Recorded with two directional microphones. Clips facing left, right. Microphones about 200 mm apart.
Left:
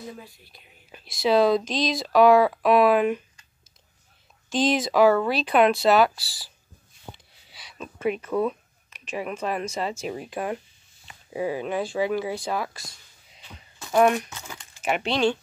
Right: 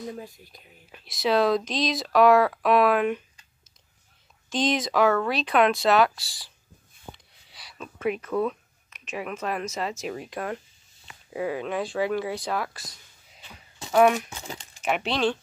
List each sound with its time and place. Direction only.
0.2 s speech: 45° right (ahead or behind)
0.9 s speech: centre (ahead or behind)
4.5 s speech: 5° left (ahead or behind)
7.1 s a sound: centre (ahead or behind)
7.8 s speech: centre (ahead or behind)
8.3 s a sound: 5° left (ahead or behind)
9.1 s speech: centre (ahead or behind)
13.9 s speech: centre (ahead or behind)
14.3 s speech: 30° right (ahead or behind)
14.8 s speech: centre (ahead or behind)